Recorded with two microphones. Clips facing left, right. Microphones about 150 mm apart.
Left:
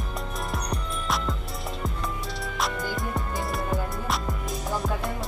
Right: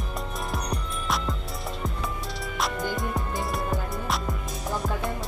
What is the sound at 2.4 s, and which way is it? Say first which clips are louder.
Music: right 1 dB; centre (ahead or behind).